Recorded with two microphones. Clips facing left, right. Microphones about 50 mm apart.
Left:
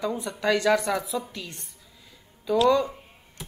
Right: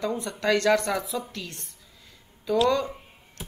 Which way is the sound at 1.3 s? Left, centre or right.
Centre.